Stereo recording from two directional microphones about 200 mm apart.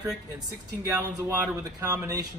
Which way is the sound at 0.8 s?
10° right (ahead or behind).